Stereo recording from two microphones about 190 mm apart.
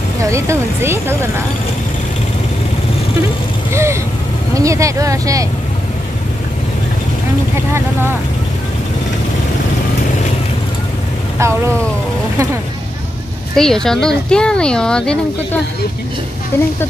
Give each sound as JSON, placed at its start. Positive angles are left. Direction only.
{"t": 0.2, "sound": "speech", "side_deg": -15}
{"t": 3.7, "sound": "speech", "side_deg": -15}
{"t": 7.5, "sound": "speech", "side_deg": -15}
{"t": 11.3, "sound": "speech", "side_deg": -15}
{"t": 13.6, "sound": "speech", "side_deg": 0}